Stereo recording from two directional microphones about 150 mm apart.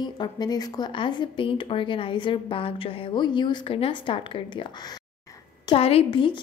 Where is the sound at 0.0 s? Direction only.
30° left (ahead or behind).